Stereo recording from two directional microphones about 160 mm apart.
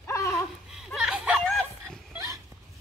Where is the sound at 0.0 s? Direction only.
20° left (ahead or behind).